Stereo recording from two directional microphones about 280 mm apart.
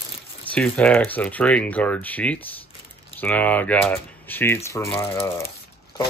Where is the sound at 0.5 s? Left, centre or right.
Centre.